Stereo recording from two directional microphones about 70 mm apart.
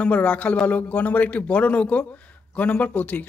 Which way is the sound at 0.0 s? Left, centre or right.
Centre.